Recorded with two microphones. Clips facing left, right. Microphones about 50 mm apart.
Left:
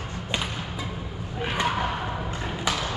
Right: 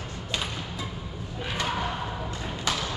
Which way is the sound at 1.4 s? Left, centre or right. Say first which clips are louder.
Left 4 dB; left.